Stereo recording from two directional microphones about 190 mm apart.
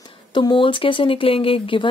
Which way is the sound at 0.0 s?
25° left (ahead or behind).